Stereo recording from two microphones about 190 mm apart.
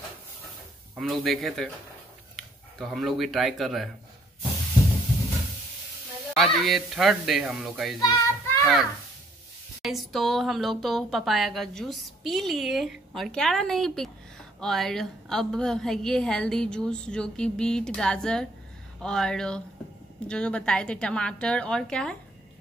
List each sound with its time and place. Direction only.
0.9 s speech: centre (ahead or behind)
6.3 s speech: centre (ahead or behind)
8.0 s child singing: 15° left (ahead or behind)
9.8 s speech: centre (ahead or behind)